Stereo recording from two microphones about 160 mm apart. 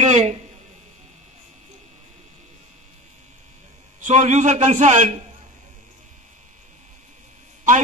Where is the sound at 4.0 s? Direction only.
45° right (ahead or behind).